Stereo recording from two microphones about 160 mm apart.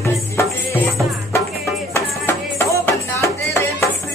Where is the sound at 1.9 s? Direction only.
15° left (ahead or behind).